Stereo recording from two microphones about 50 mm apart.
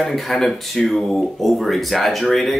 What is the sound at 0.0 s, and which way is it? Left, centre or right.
Speech, centre.